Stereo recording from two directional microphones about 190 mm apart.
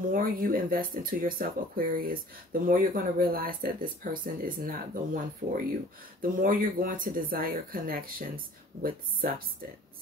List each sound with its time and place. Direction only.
0.1 s speech: 50° right (ahead or behind)